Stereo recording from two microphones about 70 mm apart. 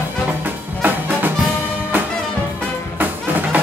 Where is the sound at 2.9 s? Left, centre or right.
Right.